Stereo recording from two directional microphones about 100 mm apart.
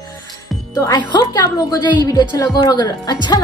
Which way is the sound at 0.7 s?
40° left (ahead or behind).